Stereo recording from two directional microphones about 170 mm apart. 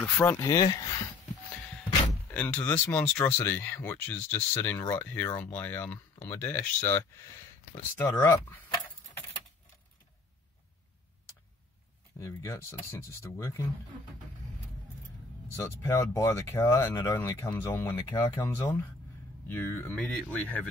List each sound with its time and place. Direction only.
0.2 s speech: 15° left (ahead or behind)
2.2 s speech: 10° left (ahead or behind)
12.2 s speech: 15° left (ahead or behind)
15.5 s speech: 20° left (ahead or behind)